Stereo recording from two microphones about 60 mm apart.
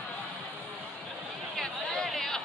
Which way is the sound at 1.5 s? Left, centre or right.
Centre.